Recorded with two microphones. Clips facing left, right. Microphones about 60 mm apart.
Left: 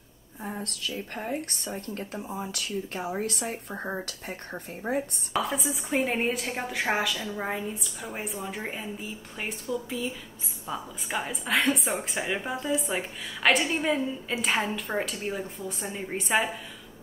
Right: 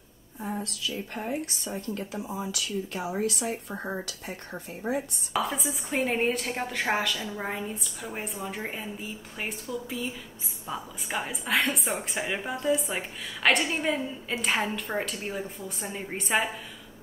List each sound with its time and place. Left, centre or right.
0.7 s a woman's voice: left
2.1 s speech: centre
2.5 s a woman's voice: left
5.3 s a woman's voice: centre